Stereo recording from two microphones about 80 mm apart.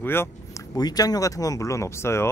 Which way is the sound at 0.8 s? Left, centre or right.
Left.